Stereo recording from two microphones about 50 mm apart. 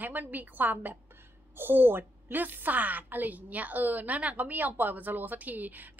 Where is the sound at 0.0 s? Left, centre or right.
Right.